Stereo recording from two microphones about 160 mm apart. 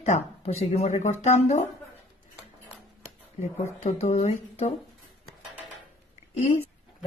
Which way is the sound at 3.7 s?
45° left (ahead or behind).